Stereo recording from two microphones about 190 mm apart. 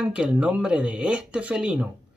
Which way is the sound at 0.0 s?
5° right (ahead or behind).